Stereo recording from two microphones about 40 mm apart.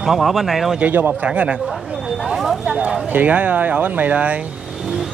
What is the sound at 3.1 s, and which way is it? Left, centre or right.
Speech, right.